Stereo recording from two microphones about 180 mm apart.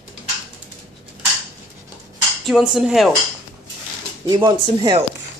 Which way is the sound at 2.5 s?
5° right (ahead or behind).